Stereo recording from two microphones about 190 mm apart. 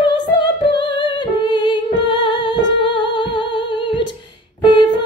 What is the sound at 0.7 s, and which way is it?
Music, 25° left (ahead or behind).